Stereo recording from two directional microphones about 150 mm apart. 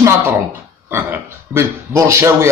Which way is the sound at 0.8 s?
15° right (ahead or behind).